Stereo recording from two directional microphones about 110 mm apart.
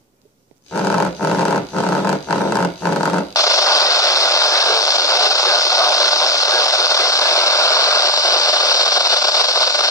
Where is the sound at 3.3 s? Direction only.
30° left (ahead or behind).